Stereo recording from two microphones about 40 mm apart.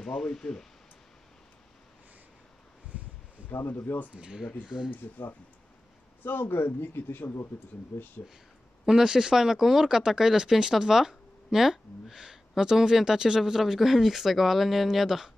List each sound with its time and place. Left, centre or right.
0.0 s speech: centre
2.9 s a sound: right
3.5 s speech: left
4.1 s speech: right
4.9 s speech: left
6.2 s speech: left
8.8 s speech: centre